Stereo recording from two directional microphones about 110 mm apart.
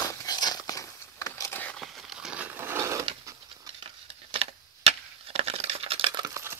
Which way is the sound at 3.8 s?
60° right (ahead or behind).